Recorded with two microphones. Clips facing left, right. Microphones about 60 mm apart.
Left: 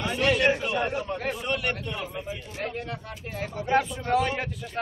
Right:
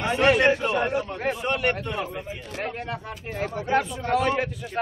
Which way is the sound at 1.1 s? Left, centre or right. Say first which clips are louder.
Right 3 dB; right.